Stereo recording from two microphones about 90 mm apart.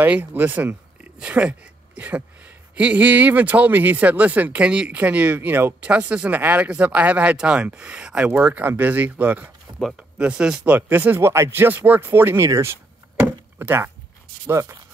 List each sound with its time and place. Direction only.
0.0 s speech: 20° right (ahead or behind)
9.7 s a sound: 60° right (ahead or behind)
10.1 s speech: 10° right (ahead or behind); by 12.7 s 30° right (ahead or behind)
13.2 s chop: 25° right (ahead or behind)
14.4 s speech: 30° right (ahead or behind)